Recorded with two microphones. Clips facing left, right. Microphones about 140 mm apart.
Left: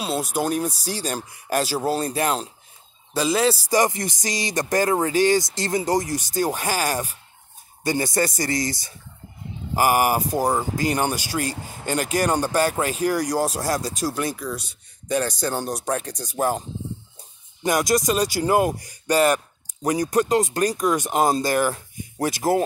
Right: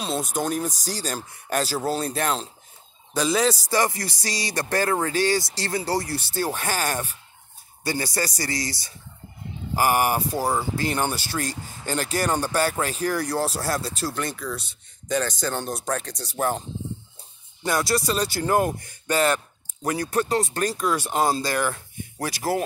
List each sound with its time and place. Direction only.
0.0 s speech: 10° left (ahead or behind)
11.5 s speech: 45° left (ahead or behind)
11.9 s speech: 10° left (ahead or behind)
17.6 s speech: 15° left (ahead or behind)